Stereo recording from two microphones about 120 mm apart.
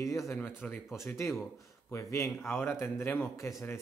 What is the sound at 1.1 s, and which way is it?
Speech, 20° left (ahead or behind).